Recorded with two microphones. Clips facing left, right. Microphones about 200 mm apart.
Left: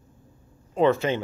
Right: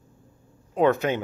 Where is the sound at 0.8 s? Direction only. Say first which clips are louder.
Even; centre (ahead or behind).